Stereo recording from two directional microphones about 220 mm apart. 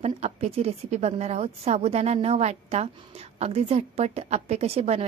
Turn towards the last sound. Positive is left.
turn(degrees=-30)  # may be behind; listen again after turning